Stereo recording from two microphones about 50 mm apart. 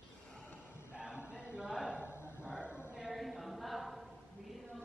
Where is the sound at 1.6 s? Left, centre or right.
Centre.